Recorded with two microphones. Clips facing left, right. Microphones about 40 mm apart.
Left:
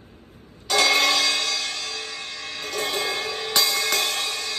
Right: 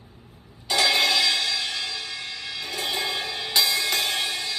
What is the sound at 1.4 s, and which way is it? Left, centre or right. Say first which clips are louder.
Music: even; right.